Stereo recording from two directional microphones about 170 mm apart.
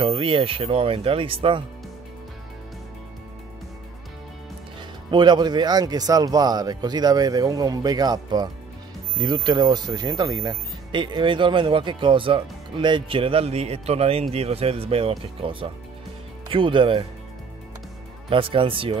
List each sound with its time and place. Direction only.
0.0 s speech: 35° right (ahead or behind)
5.1 s speech: 25° right (ahead or behind)
18.3 s speech: 30° right (ahead or behind)